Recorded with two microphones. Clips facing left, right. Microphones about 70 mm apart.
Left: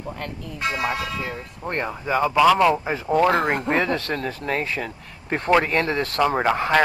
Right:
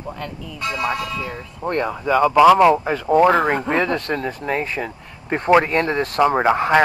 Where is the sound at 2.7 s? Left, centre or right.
Centre.